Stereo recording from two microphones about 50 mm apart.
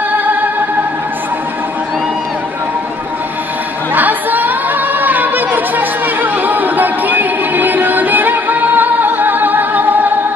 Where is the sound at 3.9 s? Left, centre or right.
Right.